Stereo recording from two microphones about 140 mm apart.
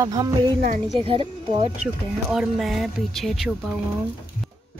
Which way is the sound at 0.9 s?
40° right (ahead or behind).